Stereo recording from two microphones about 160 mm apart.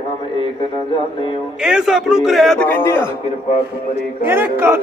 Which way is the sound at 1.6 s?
5° right (ahead or behind).